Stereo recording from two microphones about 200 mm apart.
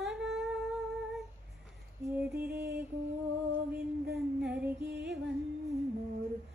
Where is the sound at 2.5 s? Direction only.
55° right (ahead or behind).